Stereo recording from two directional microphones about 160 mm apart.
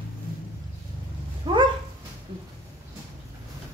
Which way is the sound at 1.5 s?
30° right (ahead or behind).